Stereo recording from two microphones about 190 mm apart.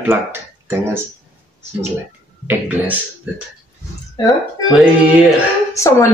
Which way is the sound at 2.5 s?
10° right (ahead or behind).